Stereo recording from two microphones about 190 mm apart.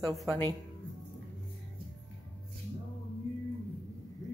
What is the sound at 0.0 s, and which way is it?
Speech, centre (ahead or behind).